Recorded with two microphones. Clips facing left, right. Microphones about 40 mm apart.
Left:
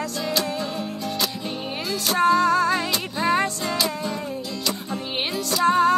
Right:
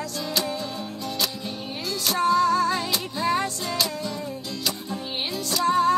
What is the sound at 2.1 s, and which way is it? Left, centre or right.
Music, left.